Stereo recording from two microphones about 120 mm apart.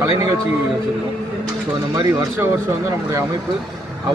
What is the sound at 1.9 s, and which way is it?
Speech, 25° right (ahead or behind).